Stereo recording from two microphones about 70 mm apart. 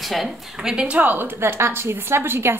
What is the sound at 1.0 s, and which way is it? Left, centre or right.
Speech, right.